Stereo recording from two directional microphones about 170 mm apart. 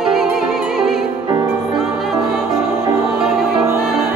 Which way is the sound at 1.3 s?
25° right (ahead or behind).